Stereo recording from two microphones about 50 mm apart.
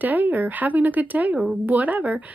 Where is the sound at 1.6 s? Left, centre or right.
Right.